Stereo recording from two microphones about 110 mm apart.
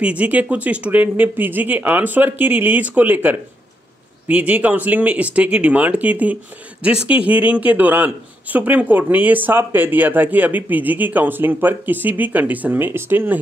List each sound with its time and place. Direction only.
0.0 s a man's voice: 10° right (ahead or behind)